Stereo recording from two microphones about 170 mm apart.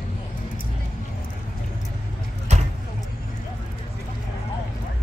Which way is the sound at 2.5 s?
40° right (ahead or behind).